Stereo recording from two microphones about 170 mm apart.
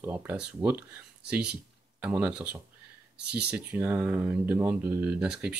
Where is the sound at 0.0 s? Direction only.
10° right (ahead or behind).